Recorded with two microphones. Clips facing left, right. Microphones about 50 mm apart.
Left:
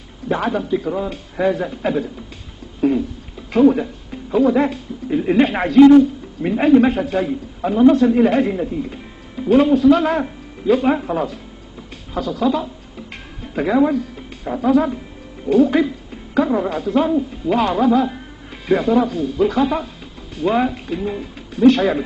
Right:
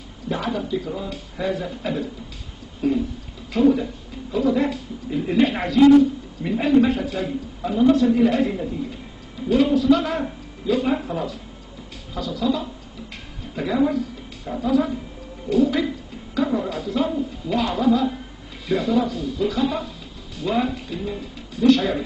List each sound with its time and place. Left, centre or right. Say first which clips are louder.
0.3 s speech: left 5 dB; left
2.8 s a sound: left 5 dB; left
3.5 s speech: left 4 dB; left
8.5 s speech: left 4 dB; left
9.5 s speech: left 5 dB; left
13.4 s a sound: left 6 dB; left
13.8 s a woman's voice: left 3 dB; left